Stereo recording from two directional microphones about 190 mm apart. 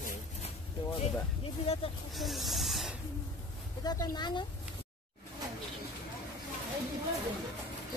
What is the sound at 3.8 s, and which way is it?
Speech, 20° left (ahead or behind).